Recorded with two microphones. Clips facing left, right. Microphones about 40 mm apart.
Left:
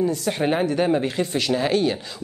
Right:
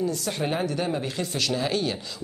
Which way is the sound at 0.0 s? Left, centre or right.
Left.